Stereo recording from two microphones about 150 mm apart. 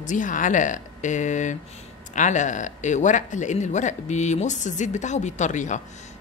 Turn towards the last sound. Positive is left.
turn(degrees=55)  # may be behind; listen again after turning